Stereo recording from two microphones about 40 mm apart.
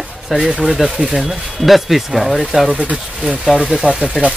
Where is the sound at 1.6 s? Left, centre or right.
Centre.